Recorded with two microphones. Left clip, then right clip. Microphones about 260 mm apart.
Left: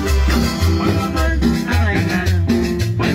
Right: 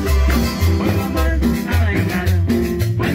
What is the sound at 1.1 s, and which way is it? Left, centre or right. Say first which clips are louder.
Music: left 1 dB; left.